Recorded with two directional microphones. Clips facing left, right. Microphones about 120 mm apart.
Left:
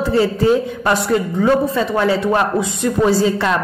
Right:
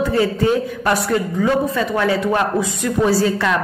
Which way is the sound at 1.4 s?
30° left (ahead or behind).